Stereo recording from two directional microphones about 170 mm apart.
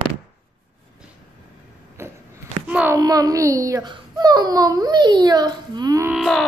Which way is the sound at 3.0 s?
20° right (ahead or behind).